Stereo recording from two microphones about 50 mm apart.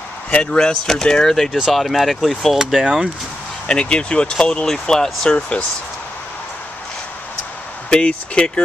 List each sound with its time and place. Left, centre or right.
0.3 s speech: centre
3.6 s speech: centre
7.9 s speech: left